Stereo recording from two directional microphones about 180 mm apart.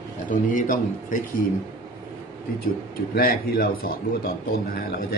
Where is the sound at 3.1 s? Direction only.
55° left (ahead or behind).